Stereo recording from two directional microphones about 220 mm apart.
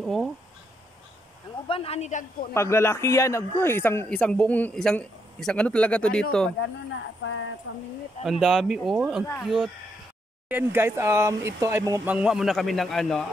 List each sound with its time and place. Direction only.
0.0 s speech: centre (ahead or behind)
1.7 s a man's voice: 25° left (ahead or behind)
2.5 s a man's voice: 10° left (ahead or behind)
7.2 s speech: 60° left (ahead or behind)
8.2 s speech: centre (ahead or behind)